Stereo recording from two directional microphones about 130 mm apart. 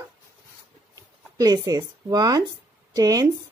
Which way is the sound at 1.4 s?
30° right (ahead or behind).